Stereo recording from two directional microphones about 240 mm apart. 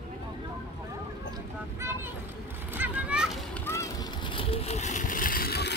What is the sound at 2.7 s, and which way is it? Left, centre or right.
Children playing, centre.